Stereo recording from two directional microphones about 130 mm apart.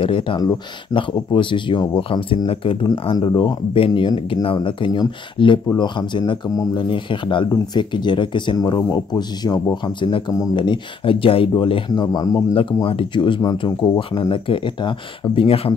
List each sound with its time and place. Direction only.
0.0 s speech: 40° left (ahead or behind)
12.8 s speech: 40° left (ahead or behind)
14.3 s speech: 40° left (ahead or behind)